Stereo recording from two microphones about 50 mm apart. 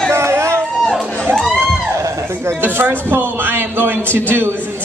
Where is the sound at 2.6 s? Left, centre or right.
Right.